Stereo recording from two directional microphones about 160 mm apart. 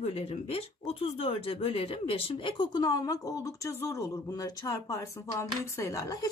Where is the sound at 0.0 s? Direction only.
40° left (ahead or behind).